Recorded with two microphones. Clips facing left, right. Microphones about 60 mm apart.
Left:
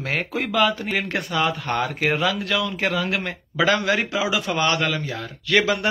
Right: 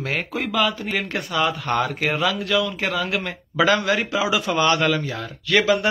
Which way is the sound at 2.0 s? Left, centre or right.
Centre.